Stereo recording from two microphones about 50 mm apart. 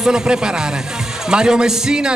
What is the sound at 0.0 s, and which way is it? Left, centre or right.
A man's voice, centre.